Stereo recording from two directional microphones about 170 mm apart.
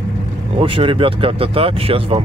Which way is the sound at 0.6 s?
30° right (ahead or behind).